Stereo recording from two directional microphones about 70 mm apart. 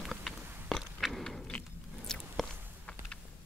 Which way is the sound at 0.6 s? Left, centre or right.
Centre.